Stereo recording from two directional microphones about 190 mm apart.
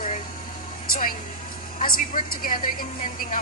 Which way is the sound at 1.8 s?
45° left (ahead or behind).